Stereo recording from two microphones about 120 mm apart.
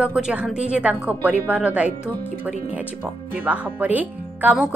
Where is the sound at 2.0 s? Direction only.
15° left (ahead or behind).